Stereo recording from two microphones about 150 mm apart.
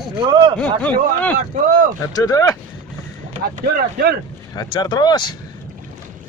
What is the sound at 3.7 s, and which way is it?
Speech, 90° right.